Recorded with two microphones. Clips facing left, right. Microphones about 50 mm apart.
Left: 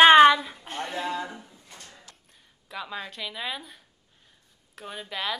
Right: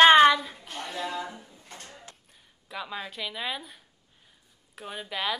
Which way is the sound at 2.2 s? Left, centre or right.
Centre.